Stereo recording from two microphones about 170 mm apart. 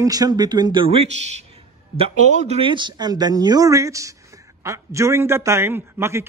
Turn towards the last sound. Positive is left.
turn(degrees=-15)  # may be behind; listen again after turning